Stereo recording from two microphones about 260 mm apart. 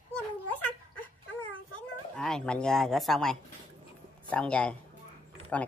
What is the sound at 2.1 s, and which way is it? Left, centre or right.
Speech, centre.